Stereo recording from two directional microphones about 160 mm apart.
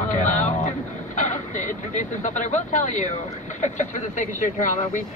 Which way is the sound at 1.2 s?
50° left (ahead or behind).